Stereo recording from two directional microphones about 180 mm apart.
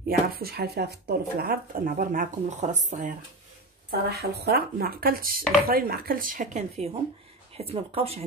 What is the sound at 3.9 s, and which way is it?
Speech, 60° right (ahead or behind).